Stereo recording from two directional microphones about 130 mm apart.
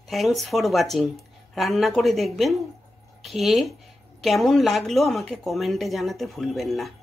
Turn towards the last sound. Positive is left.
turn(degrees=0)  # may be behind; listen again after turning